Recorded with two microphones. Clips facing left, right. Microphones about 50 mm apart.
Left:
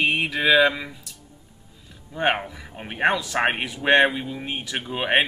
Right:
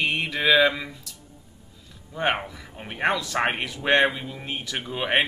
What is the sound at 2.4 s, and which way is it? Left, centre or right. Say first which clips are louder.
Speech: left 2 dB; centre.